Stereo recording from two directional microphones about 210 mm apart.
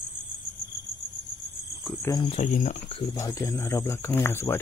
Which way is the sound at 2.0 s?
15° left (ahead or behind).